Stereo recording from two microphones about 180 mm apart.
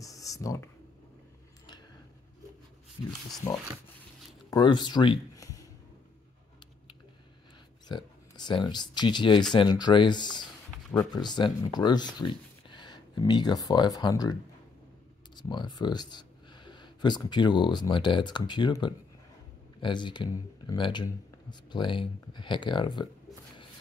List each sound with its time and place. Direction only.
0.0 s a sound: 20° left (ahead or behind)
4.5 s speech: 25° left (ahead or behind)
7.9 s speech: 25° left (ahead or behind)
15.3 s speech: 25° left (ahead or behind)